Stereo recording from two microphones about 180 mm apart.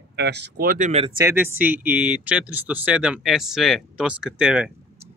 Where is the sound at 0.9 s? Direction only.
35° right (ahead or behind).